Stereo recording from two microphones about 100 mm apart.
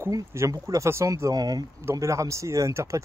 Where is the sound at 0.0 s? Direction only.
30° right (ahead or behind).